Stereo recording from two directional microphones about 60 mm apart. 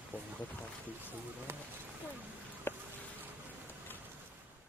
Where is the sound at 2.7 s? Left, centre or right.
Left.